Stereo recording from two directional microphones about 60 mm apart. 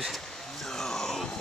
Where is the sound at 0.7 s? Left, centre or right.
Centre.